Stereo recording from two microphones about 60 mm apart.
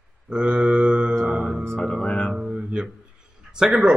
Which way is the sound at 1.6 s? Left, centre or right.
Centre.